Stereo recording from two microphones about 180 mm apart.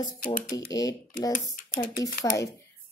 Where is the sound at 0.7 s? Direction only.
20° left (ahead or behind).